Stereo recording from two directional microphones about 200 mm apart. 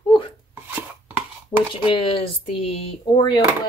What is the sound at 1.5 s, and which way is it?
Speech, 20° left (ahead or behind).